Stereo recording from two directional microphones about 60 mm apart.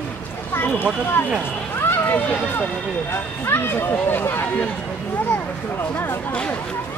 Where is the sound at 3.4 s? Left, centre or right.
Left.